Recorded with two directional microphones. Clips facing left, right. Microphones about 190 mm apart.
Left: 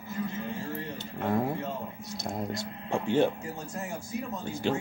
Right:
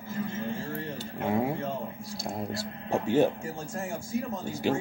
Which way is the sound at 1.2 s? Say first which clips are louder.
Right 1 dB; centre (ahead or behind).